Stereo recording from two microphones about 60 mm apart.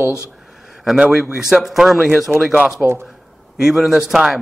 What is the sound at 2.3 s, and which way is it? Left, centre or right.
Speech, right.